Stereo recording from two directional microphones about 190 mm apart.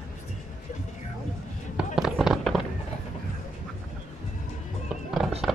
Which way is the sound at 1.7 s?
Centre (ahead or behind).